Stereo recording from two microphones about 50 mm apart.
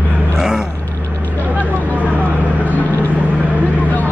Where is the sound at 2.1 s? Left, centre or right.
Right.